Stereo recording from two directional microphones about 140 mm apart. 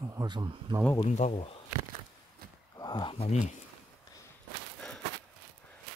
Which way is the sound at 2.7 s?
30° left (ahead or behind).